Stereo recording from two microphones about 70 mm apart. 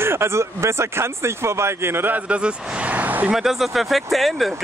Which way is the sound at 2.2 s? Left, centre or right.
Centre.